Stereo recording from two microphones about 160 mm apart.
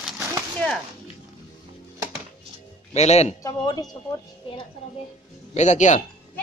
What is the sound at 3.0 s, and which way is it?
Speech, 45° left (ahead or behind).